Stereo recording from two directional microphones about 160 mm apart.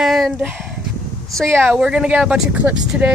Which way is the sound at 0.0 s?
Centre (ahead or behind).